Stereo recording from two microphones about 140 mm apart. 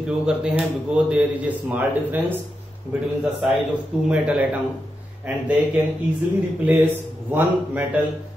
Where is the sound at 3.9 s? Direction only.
5° right (ahead or behind).